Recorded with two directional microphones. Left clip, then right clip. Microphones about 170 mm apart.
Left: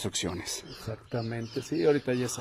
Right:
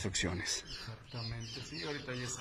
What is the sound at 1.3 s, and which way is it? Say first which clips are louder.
Speech: left 12 dB; 75° left (ahead or behind).